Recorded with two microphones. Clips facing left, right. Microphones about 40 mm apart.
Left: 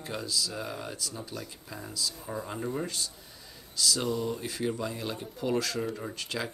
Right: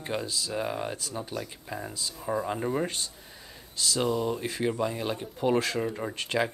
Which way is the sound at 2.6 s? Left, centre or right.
Right.